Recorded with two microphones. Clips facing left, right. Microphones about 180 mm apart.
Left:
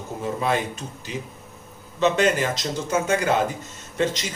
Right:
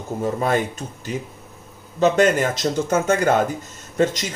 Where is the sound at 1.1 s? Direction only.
50° right (ahead or behind).